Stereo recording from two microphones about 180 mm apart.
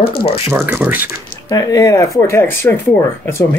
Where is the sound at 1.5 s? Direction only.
20° left (ahead or behind).